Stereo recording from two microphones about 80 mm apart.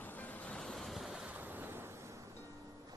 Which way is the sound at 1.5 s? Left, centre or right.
Right.